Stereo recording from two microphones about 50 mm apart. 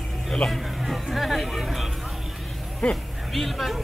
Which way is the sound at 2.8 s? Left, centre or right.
Left.